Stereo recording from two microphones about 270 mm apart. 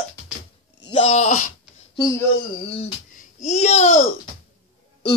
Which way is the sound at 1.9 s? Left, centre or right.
Centre.